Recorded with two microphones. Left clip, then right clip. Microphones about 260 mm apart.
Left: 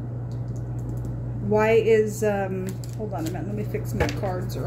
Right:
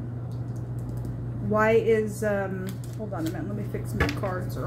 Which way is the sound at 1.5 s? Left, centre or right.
Left.